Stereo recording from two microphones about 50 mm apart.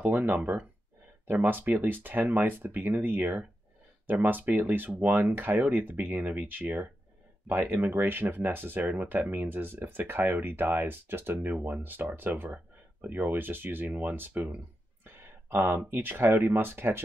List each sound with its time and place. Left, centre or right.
0.0 s speech: right
15.2 s speech: right